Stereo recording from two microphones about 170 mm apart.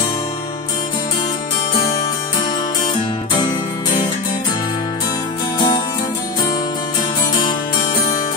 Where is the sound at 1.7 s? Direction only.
20° left (ahead or behind).